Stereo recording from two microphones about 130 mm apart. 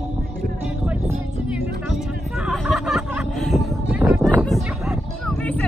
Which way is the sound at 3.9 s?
15° right (ahead or behind).